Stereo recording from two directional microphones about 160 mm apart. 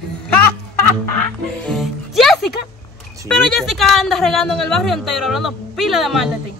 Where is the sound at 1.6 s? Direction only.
Centre (ahead or behind).